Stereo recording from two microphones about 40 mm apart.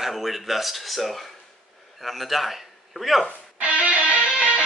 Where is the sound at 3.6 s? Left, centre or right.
Right.